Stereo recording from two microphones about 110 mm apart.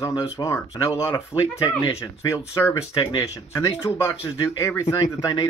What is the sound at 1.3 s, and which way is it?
Speech, 40° left (ahead or behind).